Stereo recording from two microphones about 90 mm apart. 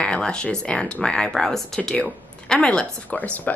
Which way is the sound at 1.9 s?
15° left (ahead or behind).